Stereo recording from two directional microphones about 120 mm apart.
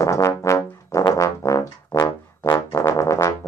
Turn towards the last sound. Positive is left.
turn(degrees=25)  # may be behind; listen again after turning